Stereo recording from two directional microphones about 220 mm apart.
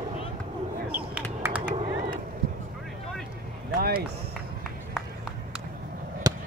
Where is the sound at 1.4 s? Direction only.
5° right (ahead or behind).